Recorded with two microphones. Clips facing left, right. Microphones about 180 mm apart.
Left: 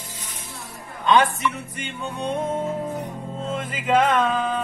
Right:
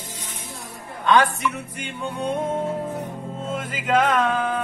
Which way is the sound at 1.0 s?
20° left (ahead or behind).